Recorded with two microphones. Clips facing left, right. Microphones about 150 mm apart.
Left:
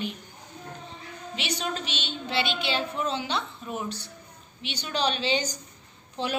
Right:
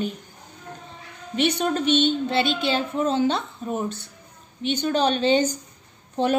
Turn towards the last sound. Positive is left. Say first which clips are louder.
# right 9 dB
turn(degrees=-50)  # may be behind; listen again after turning